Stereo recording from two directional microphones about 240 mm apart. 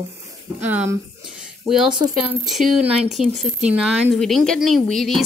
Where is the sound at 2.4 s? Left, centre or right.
Centre.